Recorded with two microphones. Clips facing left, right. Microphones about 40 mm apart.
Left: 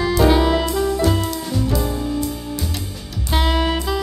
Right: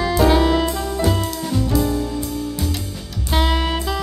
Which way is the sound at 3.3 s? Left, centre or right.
Centre.